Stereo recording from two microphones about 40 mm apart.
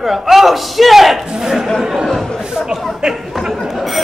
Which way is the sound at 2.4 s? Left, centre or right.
Centre.